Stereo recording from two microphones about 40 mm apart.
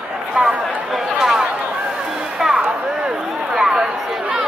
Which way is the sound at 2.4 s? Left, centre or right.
Centre.